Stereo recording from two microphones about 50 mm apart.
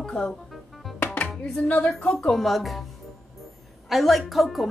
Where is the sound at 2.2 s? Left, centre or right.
Centre.